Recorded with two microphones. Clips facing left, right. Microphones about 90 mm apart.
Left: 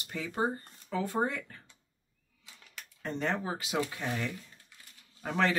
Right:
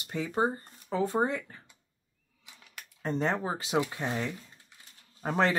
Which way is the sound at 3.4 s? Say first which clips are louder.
Right 3 dB; 30° right (ahead or behind).